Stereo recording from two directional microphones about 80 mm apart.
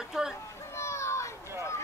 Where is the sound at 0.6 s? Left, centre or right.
Left.